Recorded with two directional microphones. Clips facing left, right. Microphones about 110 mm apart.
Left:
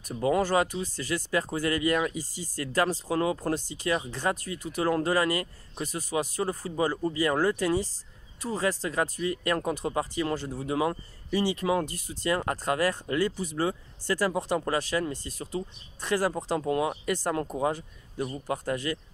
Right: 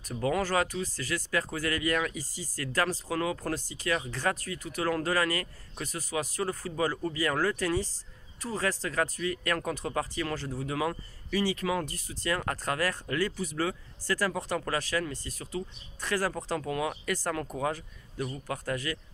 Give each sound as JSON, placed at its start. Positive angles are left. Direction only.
{"t": 0.0, "sound": "speech", "side_deg": 20}